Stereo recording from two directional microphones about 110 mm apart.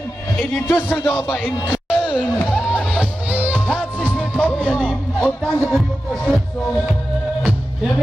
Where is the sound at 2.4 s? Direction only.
10° right (ahead or behind).